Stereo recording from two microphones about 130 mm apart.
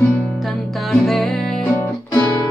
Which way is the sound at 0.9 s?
Centre (ahead or behind).